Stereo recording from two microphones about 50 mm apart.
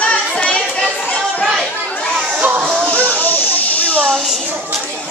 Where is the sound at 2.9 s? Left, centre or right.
Left.